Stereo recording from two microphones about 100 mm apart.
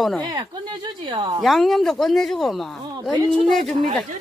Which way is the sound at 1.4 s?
Centre (ahead or behind).